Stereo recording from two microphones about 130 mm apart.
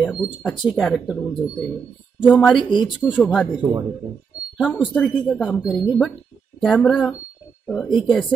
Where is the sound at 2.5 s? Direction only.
35° left (ahead or behind).